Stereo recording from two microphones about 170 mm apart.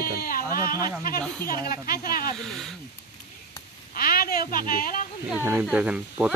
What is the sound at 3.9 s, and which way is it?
A woman's voice, 60° left (ahead or behind).